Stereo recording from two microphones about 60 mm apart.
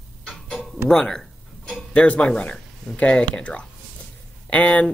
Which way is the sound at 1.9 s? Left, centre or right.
Left.